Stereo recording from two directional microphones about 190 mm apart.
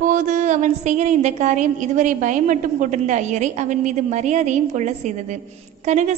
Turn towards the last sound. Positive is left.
turn(degrees=-35)  # may be behind; listen again after turning